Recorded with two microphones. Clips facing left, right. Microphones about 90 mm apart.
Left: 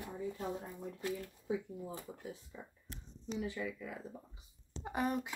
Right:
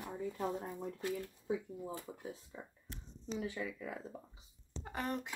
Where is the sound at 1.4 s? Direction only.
35° right (ahead or behind).